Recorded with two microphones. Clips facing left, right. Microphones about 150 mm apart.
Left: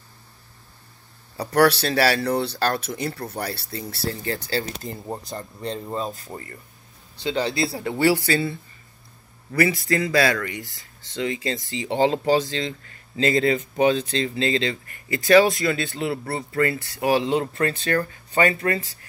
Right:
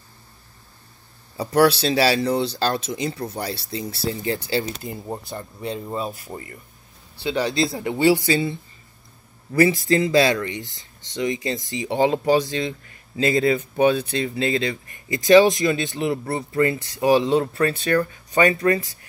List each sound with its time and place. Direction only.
1.3 s speech: 5° right (ahead or behind)
1.6 s speech: 25° right (ahead or behind)
5.0 s speech: centre (ahead or behind); by 17.2 s 20° right (ahead or behind)
17.2 s speech: 20° left (ahead or behind)
17.6 s speech: 15° right (ahead or behind)